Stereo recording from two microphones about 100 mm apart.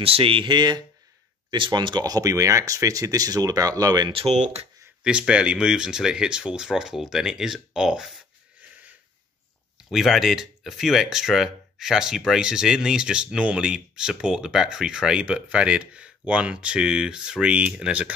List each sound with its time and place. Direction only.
0.0 s speech: 65° right (ahead or behind); by 4.1 s 40° right (ahead or behind)
4.1 s speech: 80° right
5.0 s speech: 10° right (ahead or behind)
9.8 s speech: centre (ahead or behind)